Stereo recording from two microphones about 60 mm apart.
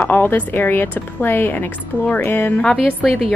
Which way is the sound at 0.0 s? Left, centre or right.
Left.